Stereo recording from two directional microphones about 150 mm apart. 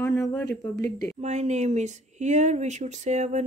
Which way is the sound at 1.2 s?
50° right (ahead or behind).